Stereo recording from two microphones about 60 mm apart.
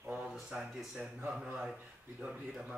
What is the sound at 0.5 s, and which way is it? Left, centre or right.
Speech, centre.